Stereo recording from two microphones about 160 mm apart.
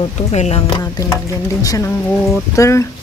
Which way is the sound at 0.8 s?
25° left (ahead or behind).